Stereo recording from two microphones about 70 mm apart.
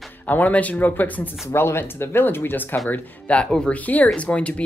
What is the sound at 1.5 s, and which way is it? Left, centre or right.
Speech, left.